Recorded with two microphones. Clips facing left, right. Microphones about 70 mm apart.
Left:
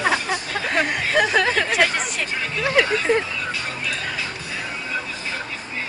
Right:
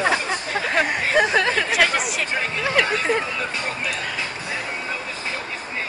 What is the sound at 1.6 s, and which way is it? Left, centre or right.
Speech, centre.